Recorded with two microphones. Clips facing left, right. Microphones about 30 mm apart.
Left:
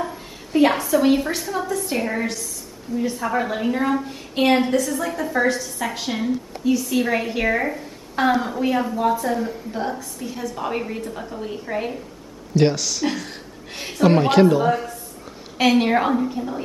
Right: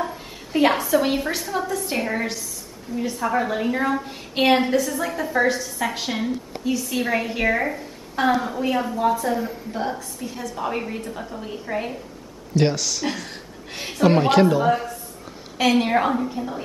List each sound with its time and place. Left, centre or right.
0.0 s a woman's voice: centre
4.0 s a woman's voice: centre